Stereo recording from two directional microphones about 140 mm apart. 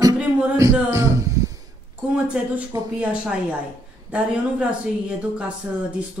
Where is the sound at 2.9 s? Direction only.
10° right (ahead or behind).